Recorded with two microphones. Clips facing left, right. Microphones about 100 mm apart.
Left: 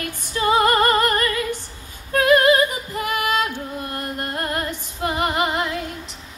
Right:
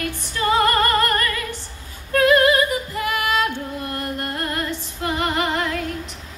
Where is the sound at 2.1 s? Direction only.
25° left (ahead or behind).